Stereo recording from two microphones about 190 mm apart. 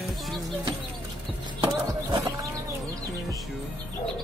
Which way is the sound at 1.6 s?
25° right (ahead or behind).